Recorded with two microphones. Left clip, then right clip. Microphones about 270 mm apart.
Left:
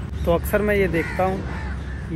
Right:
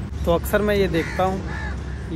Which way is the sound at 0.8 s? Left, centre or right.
Right.